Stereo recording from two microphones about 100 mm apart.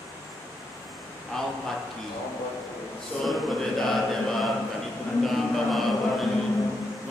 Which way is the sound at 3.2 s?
Centre (ahead or behind).